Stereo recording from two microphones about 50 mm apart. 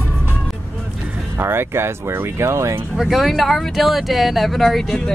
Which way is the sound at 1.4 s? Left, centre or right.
Right.